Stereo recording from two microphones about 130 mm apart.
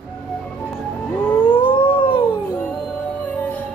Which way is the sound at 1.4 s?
40° left (ahead or behind).